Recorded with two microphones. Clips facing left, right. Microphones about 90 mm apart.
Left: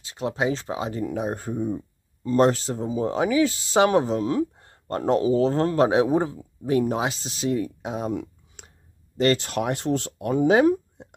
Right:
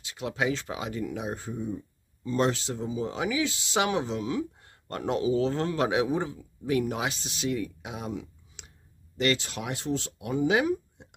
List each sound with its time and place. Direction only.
0.0 s speech: 35° left (ahead or behind)